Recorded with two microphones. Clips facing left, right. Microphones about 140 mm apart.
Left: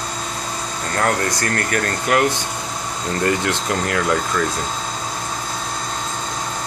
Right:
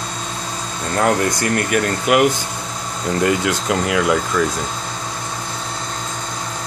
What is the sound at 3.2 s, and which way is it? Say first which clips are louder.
Speech: right 1 dB; 5° right (ahead or behind).